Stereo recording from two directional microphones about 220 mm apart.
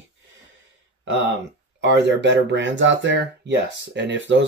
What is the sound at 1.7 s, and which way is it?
Speech, 55° right (ahead or behind).